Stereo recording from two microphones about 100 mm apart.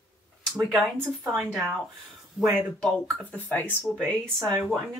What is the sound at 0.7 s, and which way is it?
Speech, centre (ahead or behind).